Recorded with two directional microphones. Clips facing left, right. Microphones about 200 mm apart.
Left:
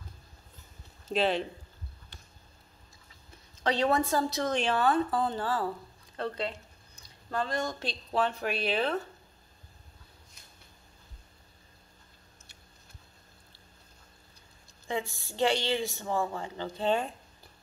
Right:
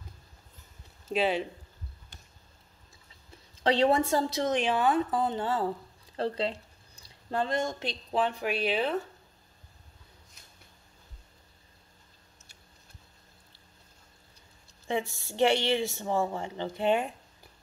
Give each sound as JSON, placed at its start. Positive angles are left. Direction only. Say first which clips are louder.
{"t": 1.0, "sound": "speech", "louder": "even", "side_deg": -10}
{"t": 3.6, "sound": "speech", "louder": "right 3 dB", "side_deg": -25}
{"t": 4.6, "sound": "speech", "louder": "even", "side_deg": -15}
{"t": 15.2, "sound": "speech", "louder": "right 3 dB", "side_deg": -25}